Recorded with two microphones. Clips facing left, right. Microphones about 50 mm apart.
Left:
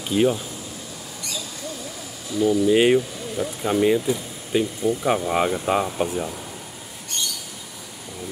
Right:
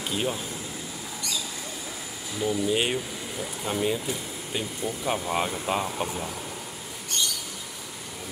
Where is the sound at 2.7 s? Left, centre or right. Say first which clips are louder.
Left 9 dB; centre.